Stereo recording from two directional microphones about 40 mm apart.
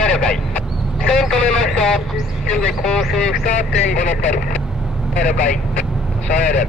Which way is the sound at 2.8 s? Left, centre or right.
Centre.